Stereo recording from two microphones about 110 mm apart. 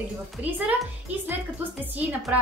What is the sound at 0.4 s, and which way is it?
Speech, 15° right (ahead or behind).